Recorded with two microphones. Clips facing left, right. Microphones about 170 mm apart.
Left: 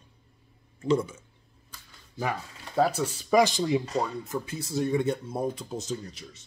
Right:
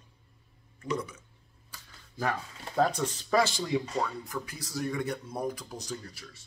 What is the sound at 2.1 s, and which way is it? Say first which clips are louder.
Speech: left 1 dB; 10° left (ahead or behind).